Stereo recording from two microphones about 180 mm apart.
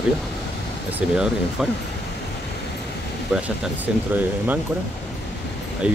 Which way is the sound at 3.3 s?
5° right (ahead or behind).